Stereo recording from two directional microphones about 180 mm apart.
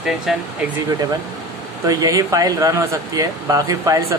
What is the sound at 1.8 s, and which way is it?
Speech, 20° right (ahead or behind).